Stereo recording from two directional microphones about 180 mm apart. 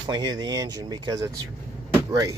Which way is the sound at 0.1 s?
25° right (ahead or behind).